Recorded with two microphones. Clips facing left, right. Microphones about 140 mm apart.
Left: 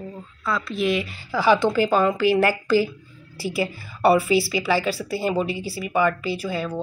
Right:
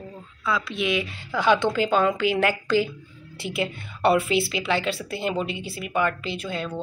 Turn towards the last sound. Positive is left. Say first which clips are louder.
# left 4 dB
turn(degrees=10)  # may be behind; listen again after turning